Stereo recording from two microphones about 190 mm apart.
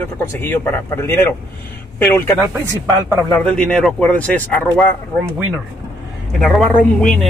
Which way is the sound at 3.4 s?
5° left (ahead or behind).